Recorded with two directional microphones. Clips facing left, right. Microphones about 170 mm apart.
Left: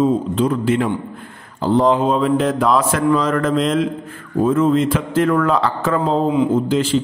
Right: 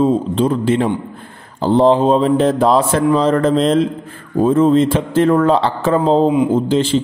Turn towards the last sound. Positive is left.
turn(degrees=-25)  # may be behind; listen again after turning